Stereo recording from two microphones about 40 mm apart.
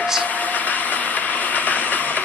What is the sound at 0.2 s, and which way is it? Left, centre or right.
Train, left.